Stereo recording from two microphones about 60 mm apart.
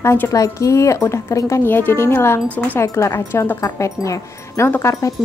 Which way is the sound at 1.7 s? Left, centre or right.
Left.